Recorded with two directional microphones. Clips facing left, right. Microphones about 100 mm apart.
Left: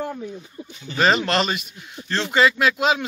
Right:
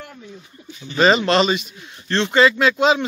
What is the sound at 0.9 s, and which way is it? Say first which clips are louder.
A man's voice: right 4 dB; centre (ahead or behind).